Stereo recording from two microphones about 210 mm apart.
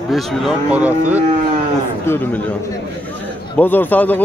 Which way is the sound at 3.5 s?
10° left (ahead or behind).